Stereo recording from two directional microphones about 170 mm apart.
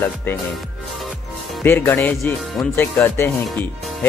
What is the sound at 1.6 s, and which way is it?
Speech, 10° left (ahead or behind).